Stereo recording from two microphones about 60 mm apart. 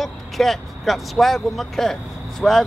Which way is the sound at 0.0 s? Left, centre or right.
Centre.